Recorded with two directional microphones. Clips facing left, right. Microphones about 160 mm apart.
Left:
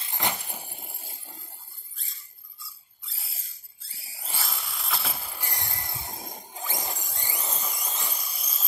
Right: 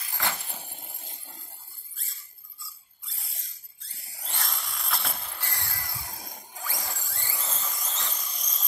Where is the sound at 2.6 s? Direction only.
Centre (ahead or behind).